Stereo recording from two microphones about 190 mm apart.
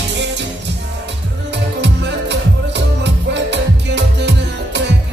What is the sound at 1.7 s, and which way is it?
Music, 65° right (ahead or behind).